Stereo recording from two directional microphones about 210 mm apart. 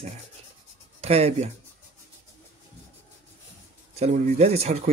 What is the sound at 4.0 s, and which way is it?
Speech, 30° right (ahead or behind).